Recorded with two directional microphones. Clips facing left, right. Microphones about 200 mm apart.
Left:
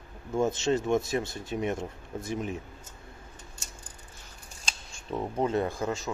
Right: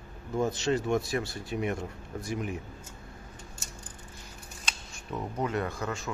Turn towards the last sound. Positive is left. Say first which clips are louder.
# left 4 dB
turn(degrees=25)  # may be behind; listen again after turning